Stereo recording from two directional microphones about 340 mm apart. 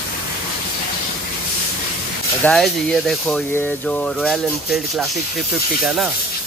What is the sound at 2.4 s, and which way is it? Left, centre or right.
Speech, centre.